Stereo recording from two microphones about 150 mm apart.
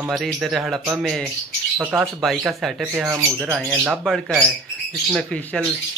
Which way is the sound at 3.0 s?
20° right (ahead or behind).